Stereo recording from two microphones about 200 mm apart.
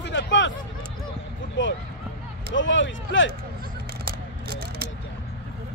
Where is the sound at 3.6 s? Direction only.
50° right (ahead or behind).